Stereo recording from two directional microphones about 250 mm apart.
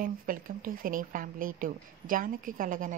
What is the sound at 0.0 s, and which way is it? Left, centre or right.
Speech, right.